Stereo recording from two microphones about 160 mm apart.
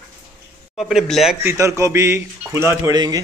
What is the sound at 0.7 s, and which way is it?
Speech, centre (ahead or behind).